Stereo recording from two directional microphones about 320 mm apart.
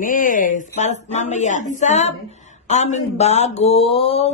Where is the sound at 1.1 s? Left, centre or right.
Left.